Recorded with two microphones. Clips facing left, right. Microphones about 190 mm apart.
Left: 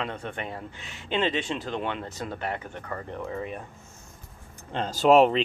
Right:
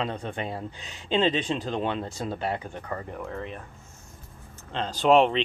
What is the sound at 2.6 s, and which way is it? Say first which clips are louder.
Speech: right 1 dB; 15° right (ahead or behind).